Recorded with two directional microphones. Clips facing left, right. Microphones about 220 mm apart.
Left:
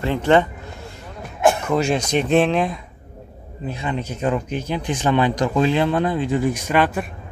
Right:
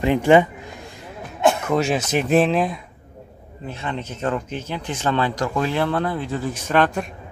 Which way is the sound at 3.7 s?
15° left (ahead or behind).